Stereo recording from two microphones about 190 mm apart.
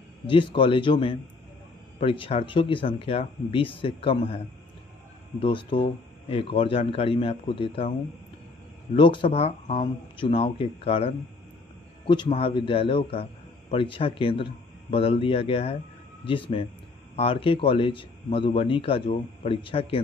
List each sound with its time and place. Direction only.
0.3 s a man's voice: 25° left (ahead or behind)
5.4 s a man's voice: 25° left (ahead or behind)
8.9 s a man's voice: 25° left (ahead or behind)
12.3 s a man's voice: 30° left (ahead or behind)